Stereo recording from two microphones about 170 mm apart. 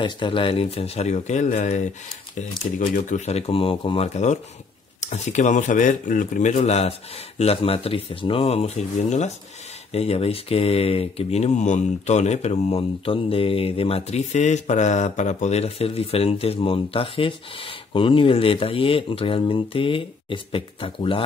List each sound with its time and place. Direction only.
0.0 s speech: 30° left (ahead or behind); by 1.8 s 45° left (ahead or behind)
2.8 s speech: 45° left (ahead or behind)
6.5 s speech: 40° left (ahead or behind)